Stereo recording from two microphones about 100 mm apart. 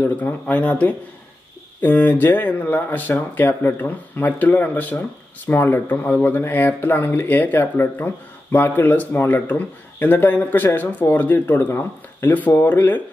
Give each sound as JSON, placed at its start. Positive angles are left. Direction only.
{"t": 0.0, "sound": "speech", "side_deg": 15}